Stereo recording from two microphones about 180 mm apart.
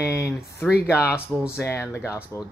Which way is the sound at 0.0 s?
15° left (ahead or behind).